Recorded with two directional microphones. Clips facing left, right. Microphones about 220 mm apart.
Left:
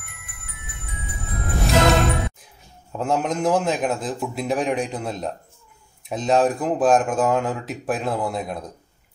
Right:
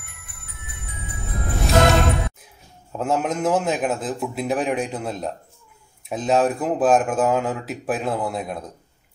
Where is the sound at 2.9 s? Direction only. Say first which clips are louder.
Even; 5° right (ahead or behind).